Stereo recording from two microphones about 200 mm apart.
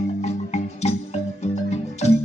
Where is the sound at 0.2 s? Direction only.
35° left (ahead or behind).